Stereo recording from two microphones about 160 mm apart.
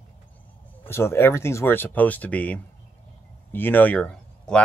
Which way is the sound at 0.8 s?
15° left (ahead or behind).